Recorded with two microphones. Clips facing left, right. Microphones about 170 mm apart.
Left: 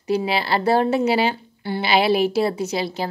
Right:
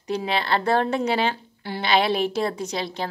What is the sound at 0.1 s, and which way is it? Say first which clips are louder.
A woman's voice: left 3 dB; 5° left (ahead or behind).